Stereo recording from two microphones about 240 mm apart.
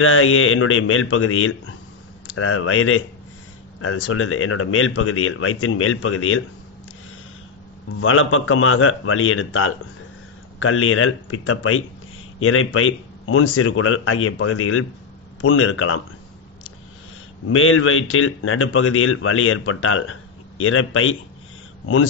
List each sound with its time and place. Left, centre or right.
0.0 s a man's voice: left
8.0 s a man's voice: left
17.5 s a man's voice: left